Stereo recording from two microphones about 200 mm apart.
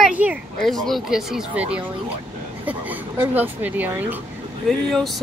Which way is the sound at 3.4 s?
10° right (ahead or behind).